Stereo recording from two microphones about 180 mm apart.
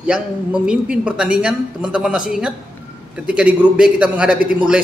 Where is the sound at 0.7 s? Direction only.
5° right (ahead or behind).